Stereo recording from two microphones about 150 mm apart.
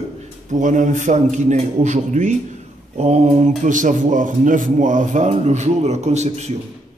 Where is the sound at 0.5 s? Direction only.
55° right (ahead or behind).